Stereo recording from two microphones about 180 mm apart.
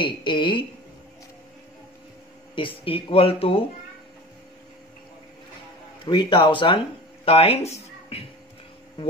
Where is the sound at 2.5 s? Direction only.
30° left (ahead or behind).